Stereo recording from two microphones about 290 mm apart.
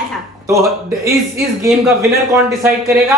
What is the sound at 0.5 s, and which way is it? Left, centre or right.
Speech, centre.